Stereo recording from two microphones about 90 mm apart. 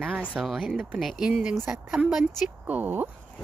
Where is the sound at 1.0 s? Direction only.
Centre (ahead or behind).